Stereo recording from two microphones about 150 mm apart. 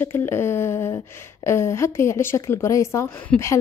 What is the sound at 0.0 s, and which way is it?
Speech, 15° left (ahead or behind).